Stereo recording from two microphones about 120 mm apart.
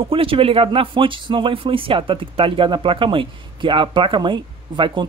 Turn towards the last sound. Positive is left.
turn(degrees=-40)  # may be behind; listen again after turning